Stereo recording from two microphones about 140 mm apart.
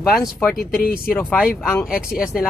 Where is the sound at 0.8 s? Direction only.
90° left.